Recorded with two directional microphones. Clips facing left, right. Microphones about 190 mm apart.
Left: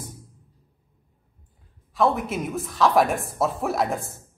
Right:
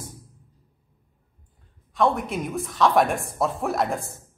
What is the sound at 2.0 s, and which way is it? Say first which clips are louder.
A woman's voice: even; centre (ahead or behind).